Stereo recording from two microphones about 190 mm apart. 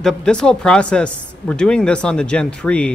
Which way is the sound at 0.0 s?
5° left (ahead or behind).